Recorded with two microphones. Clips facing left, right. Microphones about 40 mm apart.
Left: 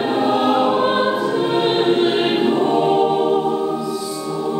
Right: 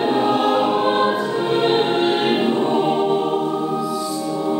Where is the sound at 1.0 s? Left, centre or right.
Centre.